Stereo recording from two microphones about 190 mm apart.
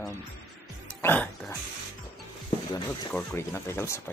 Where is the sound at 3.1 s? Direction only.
15° left (ahead or behind).